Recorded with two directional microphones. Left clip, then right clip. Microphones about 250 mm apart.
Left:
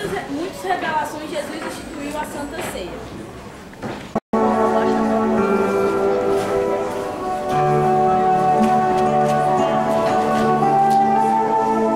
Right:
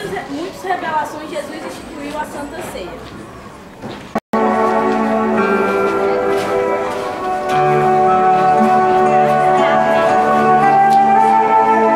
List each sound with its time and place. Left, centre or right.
0.7 s a woman's voice: centre
4.1 s music: centre